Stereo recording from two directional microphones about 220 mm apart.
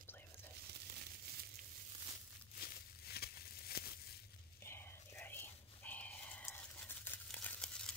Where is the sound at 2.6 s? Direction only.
45° left (ahead or behind).